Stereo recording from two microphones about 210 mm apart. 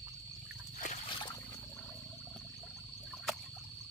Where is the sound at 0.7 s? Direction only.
35° left (ahead or behind).